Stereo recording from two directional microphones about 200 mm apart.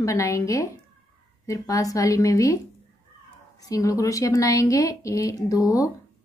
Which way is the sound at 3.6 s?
15° left (ahead or behind).